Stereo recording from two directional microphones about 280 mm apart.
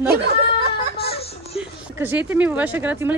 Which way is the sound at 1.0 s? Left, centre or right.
Left.